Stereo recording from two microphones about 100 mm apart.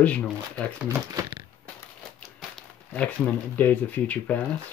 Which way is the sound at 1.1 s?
45° right (ahead or behind).